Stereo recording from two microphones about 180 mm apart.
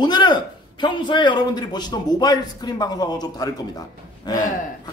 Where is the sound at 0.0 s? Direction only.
25° left (ahead or behind).